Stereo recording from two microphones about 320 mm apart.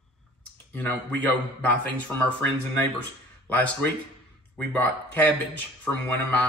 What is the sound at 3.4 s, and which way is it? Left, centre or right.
A man's voice, centre.